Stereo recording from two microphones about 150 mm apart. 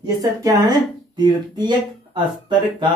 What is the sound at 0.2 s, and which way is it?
Speech, 25° right (ahead or behind).